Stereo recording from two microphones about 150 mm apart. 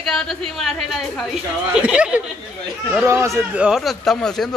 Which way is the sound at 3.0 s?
20° right (ahead or behind).